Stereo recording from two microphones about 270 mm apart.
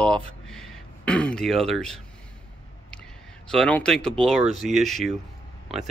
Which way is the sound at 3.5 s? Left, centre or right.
Centre.